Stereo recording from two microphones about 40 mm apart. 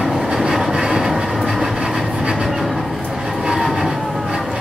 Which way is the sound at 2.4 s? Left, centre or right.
Centre.